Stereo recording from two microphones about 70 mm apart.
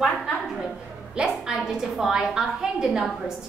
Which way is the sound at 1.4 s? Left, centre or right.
Centre.